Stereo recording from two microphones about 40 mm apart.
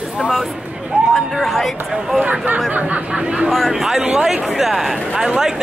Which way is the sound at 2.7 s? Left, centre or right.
Right.